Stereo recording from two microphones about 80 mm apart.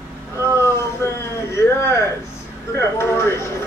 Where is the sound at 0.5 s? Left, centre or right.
Left.